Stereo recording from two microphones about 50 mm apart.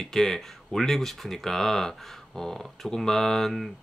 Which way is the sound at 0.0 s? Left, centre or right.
Centre.